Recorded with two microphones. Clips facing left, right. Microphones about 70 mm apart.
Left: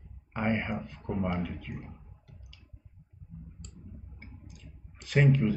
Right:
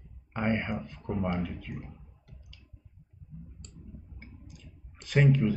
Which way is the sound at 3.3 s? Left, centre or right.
Left.